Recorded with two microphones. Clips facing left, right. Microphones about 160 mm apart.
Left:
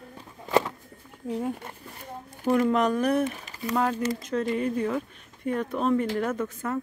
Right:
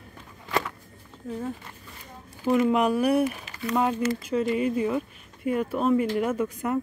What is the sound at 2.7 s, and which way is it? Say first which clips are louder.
Speech: right 1 dB; 10° right (ahead or behind).